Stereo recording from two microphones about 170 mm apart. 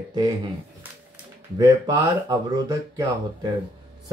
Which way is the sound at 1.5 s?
20° right (ahead or behind).